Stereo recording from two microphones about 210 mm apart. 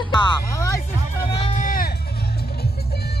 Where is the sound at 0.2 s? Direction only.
15° left (ahead or behind).